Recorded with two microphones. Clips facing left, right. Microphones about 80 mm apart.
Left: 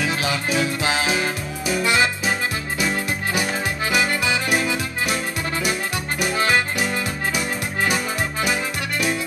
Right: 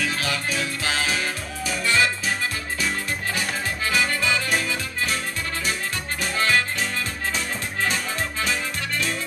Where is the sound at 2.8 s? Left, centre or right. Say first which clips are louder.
Left 4 dB; centre.